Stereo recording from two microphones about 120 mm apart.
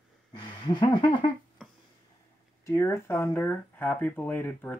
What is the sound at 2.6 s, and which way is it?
Speech, 25° left (ahead or behind).